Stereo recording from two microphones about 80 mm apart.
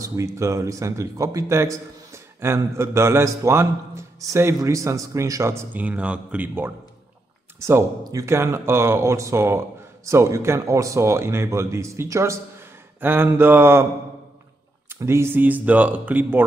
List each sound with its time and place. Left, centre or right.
0.0 s a man's voice: right
5.7 s speech: centre
7.5 s a man's voice: right
8.4 s a man's voice: right
15.0 s speech: right